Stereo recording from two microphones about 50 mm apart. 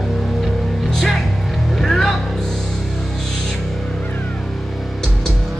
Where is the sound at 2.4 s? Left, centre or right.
Centre.